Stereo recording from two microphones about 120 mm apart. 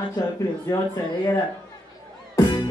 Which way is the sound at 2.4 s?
35° left (ahead or behind).